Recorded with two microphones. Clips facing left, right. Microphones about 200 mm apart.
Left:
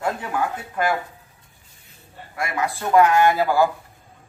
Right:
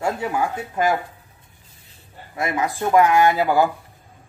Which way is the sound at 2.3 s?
20° right (ahead or behind).